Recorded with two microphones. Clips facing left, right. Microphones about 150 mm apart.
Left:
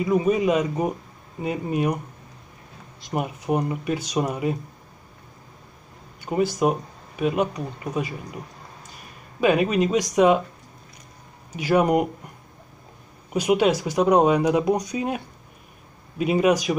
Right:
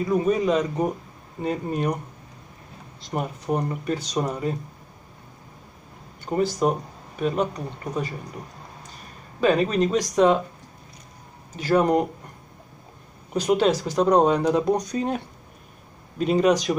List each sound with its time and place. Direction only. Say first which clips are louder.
0.0 s speech: left 1 dB; 10° left (ahead or behind)
3.1 s speech: left 1 dB; 5° left (ahead or behind)
6.2 s speech: left 1 dB; 10° left (ahead or behind)
9.4 s speech: left 1 dB; 10° left (ahead or behind)
11.5 s speech: even; 10° left (ahead or behind)
13.3 s speech: left 1 dB; 10° left (ahead or behind)